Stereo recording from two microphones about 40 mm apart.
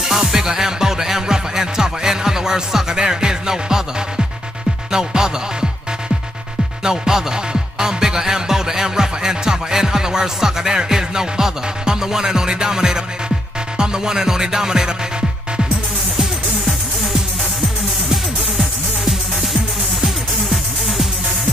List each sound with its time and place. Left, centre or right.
0.0 s music: centre
4.9 s music: centre
6.8 s music: centre